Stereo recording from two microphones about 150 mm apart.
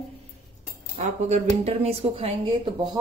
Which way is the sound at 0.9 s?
50° right (ahead or behind).